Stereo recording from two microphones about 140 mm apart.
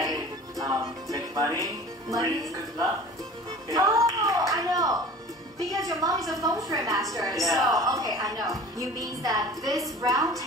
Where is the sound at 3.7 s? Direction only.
20° right (ahead or behind).